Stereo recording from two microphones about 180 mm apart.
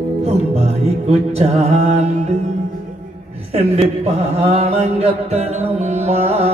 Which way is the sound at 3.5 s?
35° right (ahead or behind).